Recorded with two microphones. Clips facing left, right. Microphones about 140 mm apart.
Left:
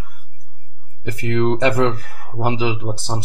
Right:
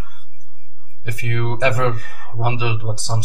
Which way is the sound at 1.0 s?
25° left (ahead or behind).